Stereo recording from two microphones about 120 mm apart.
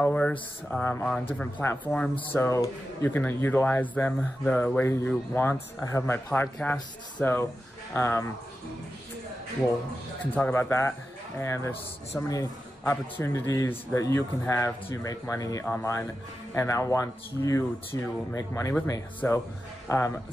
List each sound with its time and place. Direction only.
0.0 s speech: 10° left (ahead or behind)
1.4 s a man's voice: 20° left (ahead or behind)
10.3 s a man's voice: 15° left (ahead or behind)